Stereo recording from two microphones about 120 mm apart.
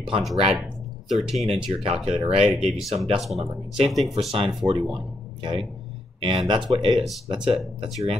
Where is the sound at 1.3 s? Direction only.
Centre (ahead or behind).